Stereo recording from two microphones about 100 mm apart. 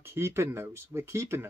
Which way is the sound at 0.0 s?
25° right (ahead or behind).